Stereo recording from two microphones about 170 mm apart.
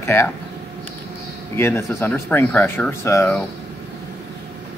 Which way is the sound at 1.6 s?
15° left (ahead or behind).